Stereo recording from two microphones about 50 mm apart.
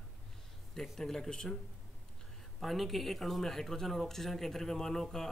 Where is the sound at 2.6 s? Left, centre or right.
Centre.